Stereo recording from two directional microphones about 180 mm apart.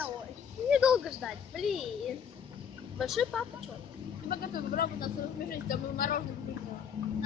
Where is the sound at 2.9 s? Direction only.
Centre (ahead or behind).